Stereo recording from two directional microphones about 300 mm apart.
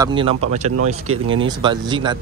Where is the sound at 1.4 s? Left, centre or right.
Centre.